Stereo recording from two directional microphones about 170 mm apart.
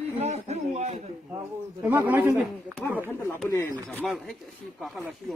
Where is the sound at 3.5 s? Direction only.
20° left (ahead or behind).